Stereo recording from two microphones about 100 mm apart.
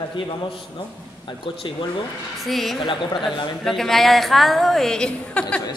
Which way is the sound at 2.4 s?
Centre (ahead or behind).